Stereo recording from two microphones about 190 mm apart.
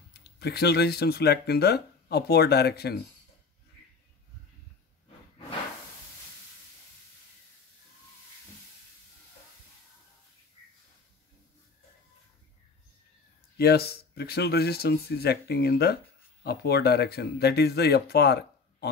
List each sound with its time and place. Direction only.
0.1 s speech: 60° left (ahead or behind)
13.6 s speech: 55° left (ahead or behind)